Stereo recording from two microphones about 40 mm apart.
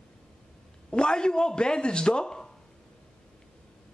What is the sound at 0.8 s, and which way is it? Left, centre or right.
Speech, left.